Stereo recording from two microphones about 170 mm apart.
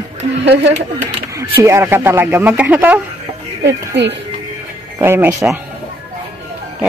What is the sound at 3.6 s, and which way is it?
Speech, 90° right.